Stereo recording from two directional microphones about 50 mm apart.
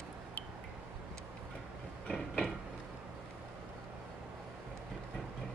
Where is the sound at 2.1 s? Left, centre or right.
Centre.